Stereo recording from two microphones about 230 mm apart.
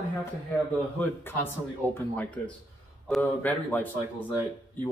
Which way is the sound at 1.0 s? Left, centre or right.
Centre.